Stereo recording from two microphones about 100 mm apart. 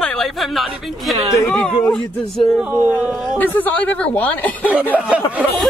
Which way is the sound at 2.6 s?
15° right (ahead or behind).